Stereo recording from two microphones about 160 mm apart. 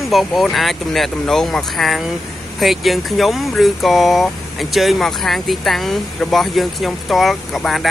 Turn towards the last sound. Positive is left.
turn(degrees=0)  # may be behind; listen again after turning